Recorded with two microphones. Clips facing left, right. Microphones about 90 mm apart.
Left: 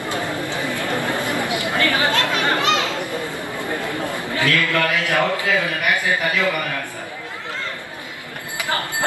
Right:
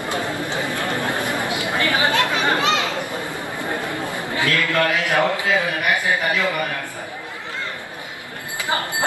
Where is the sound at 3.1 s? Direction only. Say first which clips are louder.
Left 1 dB; 15° right (ahead or behind).